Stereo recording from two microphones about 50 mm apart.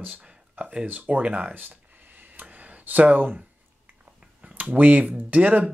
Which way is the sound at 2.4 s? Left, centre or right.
Right.